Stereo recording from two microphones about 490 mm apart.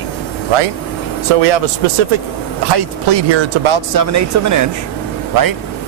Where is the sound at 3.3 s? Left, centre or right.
Right.